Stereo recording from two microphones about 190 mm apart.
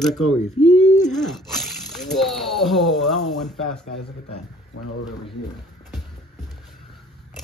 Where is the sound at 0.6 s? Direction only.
40° left (ahead or behind).